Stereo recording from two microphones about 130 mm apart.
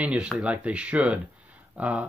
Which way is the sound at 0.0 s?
10° right (ahead or behind).